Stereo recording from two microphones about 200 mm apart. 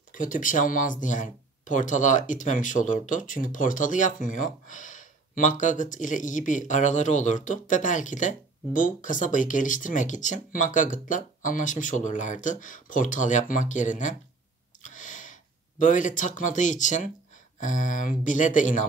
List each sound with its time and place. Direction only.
0.1 s speech: 40° left (ahead or behind)
14.8 s a sound: 40° left (ahead or behind)
15.8 s speech: 40° left (ahead or behind)